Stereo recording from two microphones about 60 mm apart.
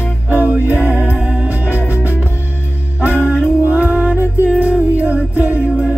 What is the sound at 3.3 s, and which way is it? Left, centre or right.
Music, right.